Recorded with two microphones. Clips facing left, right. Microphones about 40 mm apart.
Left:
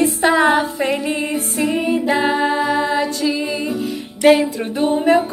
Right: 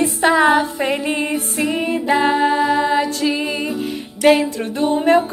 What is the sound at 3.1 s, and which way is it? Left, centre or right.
Music, right.